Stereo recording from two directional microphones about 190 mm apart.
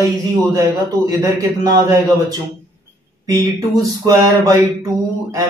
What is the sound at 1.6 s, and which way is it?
A man's voice, 15° right (ahead or behind).